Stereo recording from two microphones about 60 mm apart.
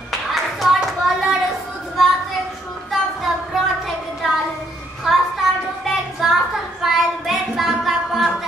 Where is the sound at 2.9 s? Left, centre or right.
Centre.